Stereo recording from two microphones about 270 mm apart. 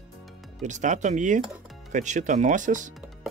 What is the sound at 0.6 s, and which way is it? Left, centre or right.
Speech, right.